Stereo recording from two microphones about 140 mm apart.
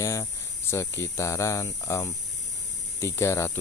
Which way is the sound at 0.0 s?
20° left (ahead or behind).